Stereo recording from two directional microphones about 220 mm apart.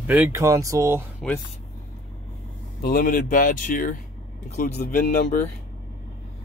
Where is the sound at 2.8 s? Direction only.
40° left (ahead or behind).